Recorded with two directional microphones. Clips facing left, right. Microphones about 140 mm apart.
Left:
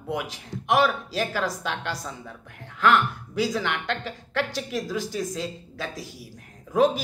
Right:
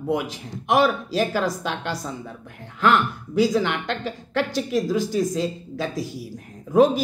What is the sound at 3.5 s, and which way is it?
Speech, 35° right (ahead or behind).